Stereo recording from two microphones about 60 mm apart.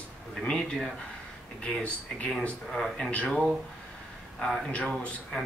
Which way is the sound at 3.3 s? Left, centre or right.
Centre.